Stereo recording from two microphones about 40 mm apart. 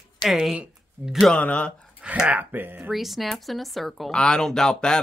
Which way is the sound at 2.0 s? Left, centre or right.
Right.